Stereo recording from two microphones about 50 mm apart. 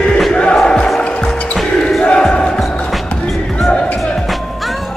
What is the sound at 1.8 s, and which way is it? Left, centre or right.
Basketball bounce, centre.